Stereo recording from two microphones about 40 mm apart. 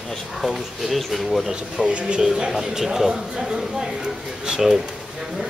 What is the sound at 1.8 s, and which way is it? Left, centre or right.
Speech, right.